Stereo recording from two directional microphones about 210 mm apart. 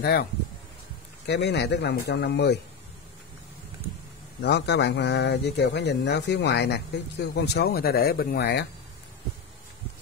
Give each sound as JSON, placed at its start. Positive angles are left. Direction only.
{"t": 0.0, "sound": "speech", "side_deg": 50}
{"t": 4.4, "sound": "speech", "side_deg": 55}